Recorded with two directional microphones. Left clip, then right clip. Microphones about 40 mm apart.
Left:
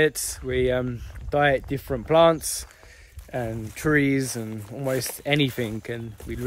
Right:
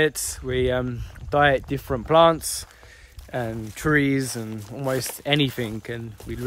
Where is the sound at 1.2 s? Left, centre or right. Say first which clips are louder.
Right 2 dB; right.